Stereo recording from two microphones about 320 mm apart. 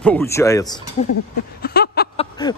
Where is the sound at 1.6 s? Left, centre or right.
Left.